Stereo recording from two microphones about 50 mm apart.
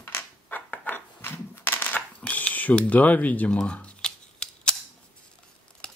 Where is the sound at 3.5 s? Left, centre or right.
Left.